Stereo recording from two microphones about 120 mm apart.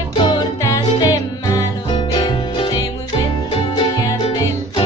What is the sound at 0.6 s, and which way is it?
Music, 30° left (ahead or behind).